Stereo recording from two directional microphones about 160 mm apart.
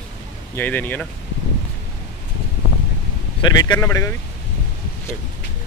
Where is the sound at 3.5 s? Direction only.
25° left (ahead or behind).